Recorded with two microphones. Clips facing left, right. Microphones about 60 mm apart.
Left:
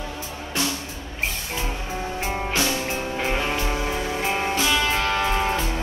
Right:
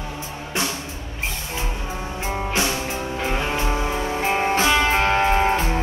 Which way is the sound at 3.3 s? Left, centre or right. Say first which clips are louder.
Right 2 dB; right.